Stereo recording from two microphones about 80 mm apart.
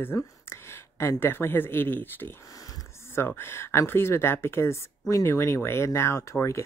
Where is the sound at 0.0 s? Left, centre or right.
Left.